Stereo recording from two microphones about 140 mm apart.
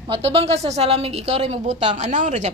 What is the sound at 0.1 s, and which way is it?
A woman's voice, 45° right (ahead or behind).